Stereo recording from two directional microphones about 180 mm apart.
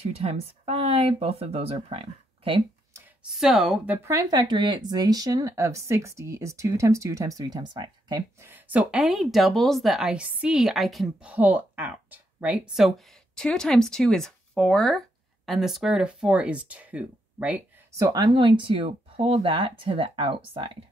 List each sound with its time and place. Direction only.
0.1 s speech: 35° right (ahead or behind)
3.3 s speech: centre (ahead or behind); by 8.5 s 25° right (ahead or behind)
8.5 s speech: 10° right (ahead or behind)
17.9 s speech: 20° right (ahead or behind)